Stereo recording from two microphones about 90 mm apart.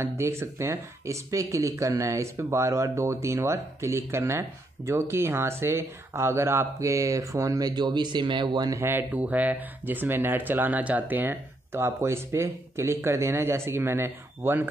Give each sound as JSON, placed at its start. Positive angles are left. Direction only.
{"t": 0.0, "sound": "speech", "side_deg": -30}
{"t": 9.1, "sound": "speech", "side_deg": -20}